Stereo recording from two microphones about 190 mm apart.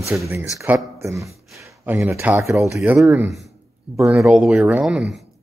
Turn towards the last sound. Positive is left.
turn(degrees=-5)  # may be behind; listen again after turning